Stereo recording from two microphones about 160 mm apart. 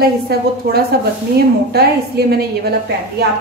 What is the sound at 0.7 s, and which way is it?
A woman's voice, 75° right (ahead or behind).